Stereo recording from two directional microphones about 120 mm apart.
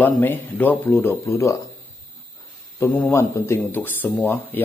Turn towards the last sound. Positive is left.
turn(degrees=20)  # may be behind; listen again after turning